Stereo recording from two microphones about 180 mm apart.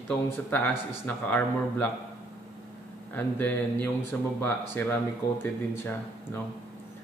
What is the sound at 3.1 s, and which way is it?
Speech, 10° left (ahead or behind).